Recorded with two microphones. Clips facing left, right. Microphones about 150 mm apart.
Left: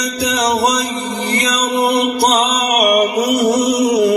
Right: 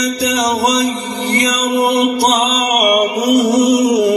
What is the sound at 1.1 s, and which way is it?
Chant, 5° left (ahead or behind).